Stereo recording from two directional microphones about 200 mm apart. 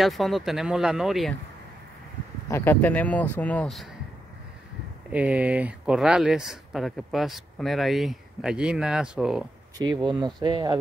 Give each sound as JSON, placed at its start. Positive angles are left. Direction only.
{"t": 0.0, "sound": "speech", "side_deg": 0}
{"t": 2.5, "sound": "speech", "side_deg": 10}
{"t": 5.1, "sound": "speech", "side_deg": -5}
{"t": 10.0, "sound": "speech", "side_deg": -20}